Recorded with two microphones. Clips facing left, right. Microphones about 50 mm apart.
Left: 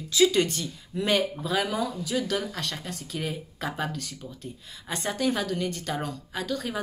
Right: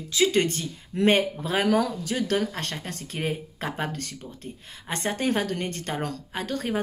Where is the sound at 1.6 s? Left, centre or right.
Right.